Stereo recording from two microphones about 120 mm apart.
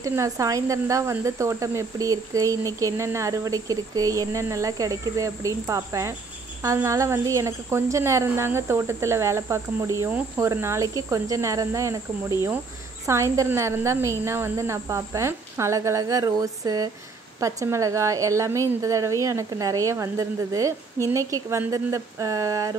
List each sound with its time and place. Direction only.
0.0 s a woman's voice: 25° right (ahead or behind)